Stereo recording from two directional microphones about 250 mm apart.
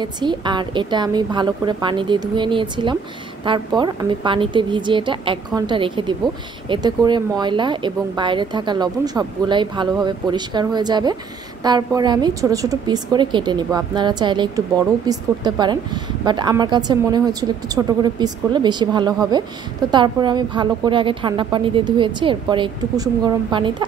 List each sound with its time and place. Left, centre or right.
0.0 s a woman's voice: centre